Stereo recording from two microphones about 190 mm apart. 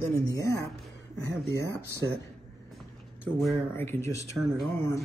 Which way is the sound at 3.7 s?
10° left (ahead or behind).